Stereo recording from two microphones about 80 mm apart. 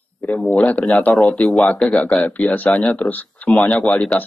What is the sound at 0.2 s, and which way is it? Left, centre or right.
Speech, centre.